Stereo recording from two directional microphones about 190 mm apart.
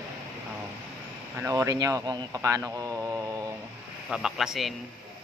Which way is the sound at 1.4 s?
15° right (ahead or behind).